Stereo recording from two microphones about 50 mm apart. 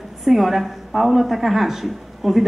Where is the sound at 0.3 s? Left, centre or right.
Centre.